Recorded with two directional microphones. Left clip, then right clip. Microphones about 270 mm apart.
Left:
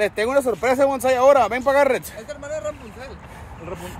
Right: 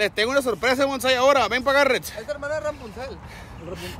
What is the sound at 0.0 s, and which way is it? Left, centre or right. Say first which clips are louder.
Snicker: left 2 dB; centre.